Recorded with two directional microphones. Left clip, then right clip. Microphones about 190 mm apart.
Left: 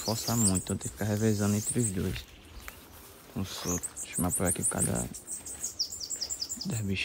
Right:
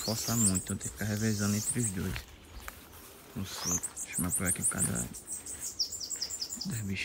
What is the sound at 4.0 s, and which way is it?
Cricket, 15° left (ahead or behind).